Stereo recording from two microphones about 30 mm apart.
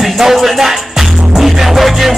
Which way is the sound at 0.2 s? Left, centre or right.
Centre.